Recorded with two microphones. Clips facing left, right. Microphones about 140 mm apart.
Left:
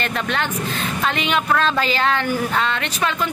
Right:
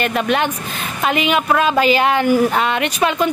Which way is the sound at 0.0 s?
15° right (ahead or behind).